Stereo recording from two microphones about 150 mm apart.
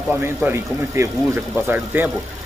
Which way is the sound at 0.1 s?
15° right (ahead or behind).